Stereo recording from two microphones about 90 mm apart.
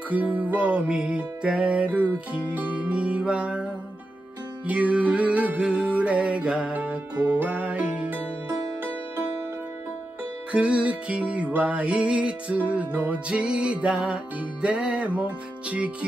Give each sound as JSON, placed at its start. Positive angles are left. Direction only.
{"t": 0.1, "sound": "music", "side_deg": -15}
{"t": 10.5, "sound": "music", "side_deg": -15}